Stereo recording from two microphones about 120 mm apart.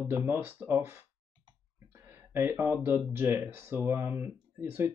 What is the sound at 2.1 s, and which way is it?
Speech, 20° right (ahead or behind).